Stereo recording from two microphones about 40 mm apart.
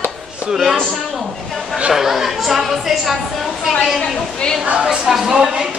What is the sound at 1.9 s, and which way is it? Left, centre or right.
Speech, centre.